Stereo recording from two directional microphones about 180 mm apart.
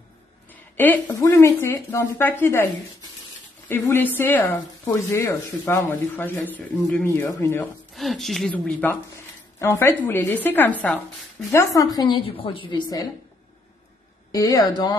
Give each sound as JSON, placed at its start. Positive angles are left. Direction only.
{"t": 0.5, "sound": "speech", "side_deg": 10}
{"t": 7.9, "sound": "a woman's voice", "side_deg": 0}
{"t": 11.5, "sound": "a woman's voice", "side_deg": 20}
{"t": 14.3, "sound": "a woman's voice", "side_deg": 20}